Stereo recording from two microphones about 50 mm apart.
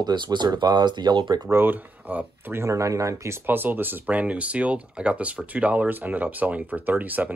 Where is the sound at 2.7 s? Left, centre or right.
Right.